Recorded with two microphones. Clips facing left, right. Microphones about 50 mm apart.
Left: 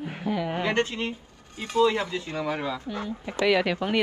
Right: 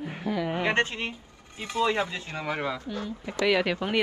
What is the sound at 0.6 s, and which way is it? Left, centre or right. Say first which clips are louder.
Speech: even; right.